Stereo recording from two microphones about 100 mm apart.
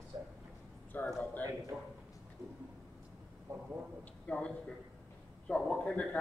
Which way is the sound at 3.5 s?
30° right (ahead or behind).